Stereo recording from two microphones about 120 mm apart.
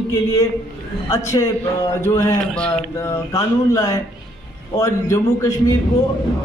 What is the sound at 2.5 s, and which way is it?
Speech, 10° left (ahead or behind).